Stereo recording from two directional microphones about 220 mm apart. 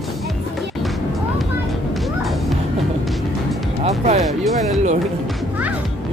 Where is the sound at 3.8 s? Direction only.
30° right (ahead or behind).